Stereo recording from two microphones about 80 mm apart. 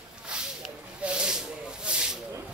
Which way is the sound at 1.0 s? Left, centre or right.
Centre.